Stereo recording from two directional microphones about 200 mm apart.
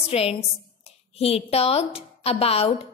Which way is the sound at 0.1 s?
30° left (ahead or behind).